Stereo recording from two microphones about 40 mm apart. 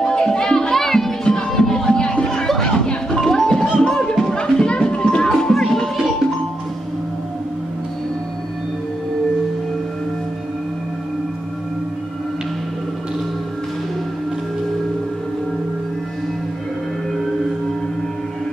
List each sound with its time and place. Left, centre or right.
0.0 s music: centre